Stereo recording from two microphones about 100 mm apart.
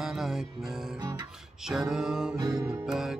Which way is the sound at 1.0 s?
45° right (ahead or behind).